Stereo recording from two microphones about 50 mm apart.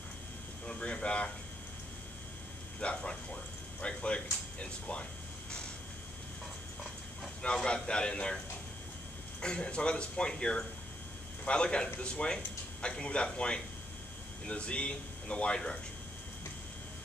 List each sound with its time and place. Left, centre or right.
0.7 s speech: centre
2.8 s speech: left
7.4 s speech: centre
9.4 s speech: centre